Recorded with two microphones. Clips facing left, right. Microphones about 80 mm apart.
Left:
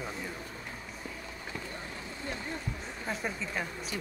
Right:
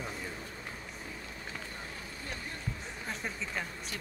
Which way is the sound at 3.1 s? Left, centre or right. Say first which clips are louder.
Left 4 dB; centre.